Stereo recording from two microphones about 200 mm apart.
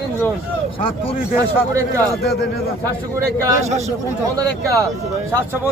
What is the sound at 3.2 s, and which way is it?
Speech, 15° right (ahead or behind).